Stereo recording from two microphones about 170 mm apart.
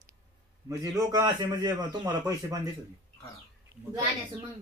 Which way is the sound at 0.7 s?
20° right (ahead or behind).